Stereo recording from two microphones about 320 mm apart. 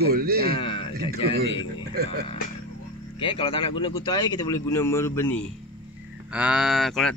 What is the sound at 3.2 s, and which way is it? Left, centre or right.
A man's voice, centre.